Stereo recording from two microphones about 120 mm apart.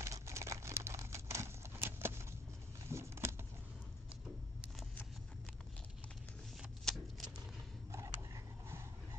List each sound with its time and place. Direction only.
0.0 s crumpling: 25° right (ahead or behind)
2.9 s vehicle: 20° right (ahead or behind)
6.8 s a sound: 5° left (ahead or behind)